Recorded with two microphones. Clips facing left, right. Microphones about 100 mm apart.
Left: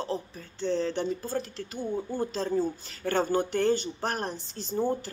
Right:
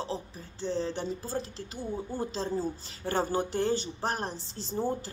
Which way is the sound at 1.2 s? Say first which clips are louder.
Left 3 dB; 20° right (ahead or behind).